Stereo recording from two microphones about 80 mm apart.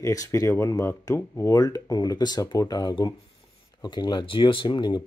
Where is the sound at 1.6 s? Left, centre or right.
Left.